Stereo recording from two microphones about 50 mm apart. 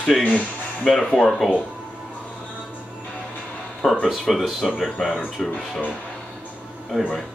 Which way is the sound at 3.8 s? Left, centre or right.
Centre.